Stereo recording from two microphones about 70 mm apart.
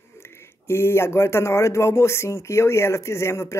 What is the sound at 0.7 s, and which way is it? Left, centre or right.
Speech, left.